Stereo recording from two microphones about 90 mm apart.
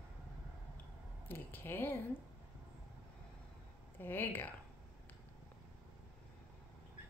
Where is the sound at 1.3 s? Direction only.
25° left (ahead or behind).